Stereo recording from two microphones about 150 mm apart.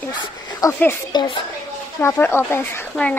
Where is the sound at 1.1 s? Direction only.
30° left (ahead or behind).